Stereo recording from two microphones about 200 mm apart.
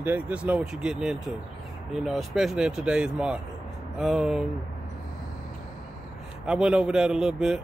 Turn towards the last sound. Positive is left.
turn(degrees=0)  # may be behind; listen again after turning